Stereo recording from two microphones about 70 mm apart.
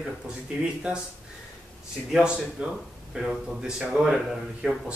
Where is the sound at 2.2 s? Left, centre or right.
Centre.